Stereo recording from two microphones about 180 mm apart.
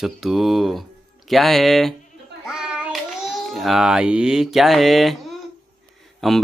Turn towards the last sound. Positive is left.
turn(degrees=0)  # may be behind; listen again after turning